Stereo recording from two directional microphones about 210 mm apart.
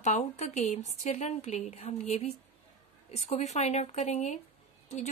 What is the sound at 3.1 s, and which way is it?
Speech, 30° left (ahead or behind).